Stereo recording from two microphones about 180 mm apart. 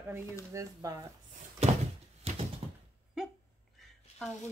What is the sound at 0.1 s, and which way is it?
Speech, 15° right (ahead or behind).